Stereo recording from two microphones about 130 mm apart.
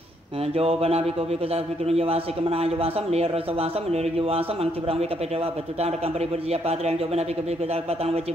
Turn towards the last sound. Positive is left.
turn(degrees=-55)  # may be behind; listen again after turning